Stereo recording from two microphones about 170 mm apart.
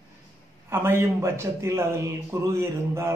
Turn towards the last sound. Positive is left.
turn(degrees=-15)  # may be behind; listen again after turning